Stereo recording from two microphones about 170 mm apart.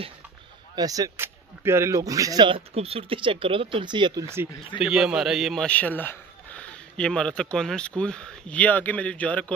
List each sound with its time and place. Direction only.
0.7 s speech: 20° right (ahead or behind)
4.7 s a man's voice: 5° right (ahead or behind)